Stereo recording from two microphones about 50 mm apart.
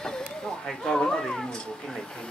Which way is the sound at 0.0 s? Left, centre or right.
Centre.